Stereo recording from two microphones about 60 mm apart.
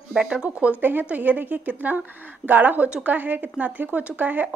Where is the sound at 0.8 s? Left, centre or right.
Right.